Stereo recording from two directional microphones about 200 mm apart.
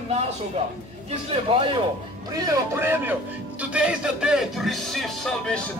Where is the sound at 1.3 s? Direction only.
30° right (ahead or behind).